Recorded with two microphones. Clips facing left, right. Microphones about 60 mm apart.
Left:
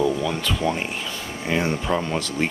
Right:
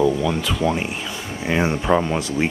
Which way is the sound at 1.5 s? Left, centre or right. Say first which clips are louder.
Right 4 dB; centre.